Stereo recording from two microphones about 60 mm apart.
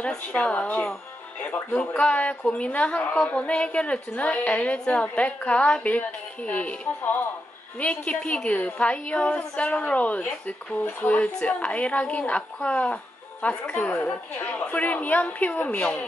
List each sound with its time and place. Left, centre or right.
0.1 s a woman's voice: left